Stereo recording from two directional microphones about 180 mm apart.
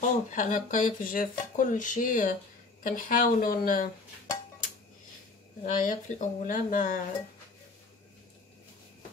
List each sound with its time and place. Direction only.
0.0 s speech: 45° left (ahead or behind)
5.6 s speech: 45° left (ahead or behind)